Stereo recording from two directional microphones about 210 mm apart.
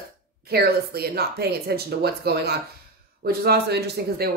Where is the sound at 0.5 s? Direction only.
50° right (ahead or behind).